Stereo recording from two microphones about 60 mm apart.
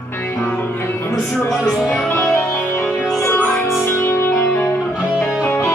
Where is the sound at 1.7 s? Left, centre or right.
Centre.